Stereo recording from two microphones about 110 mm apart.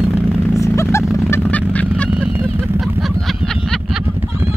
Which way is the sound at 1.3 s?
15° left (ahead or behind).